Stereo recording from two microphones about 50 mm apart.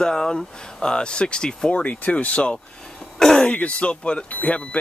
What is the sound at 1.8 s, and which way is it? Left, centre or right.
Speech, left.